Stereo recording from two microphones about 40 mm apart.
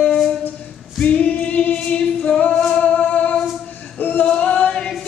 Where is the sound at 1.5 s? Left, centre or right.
Left.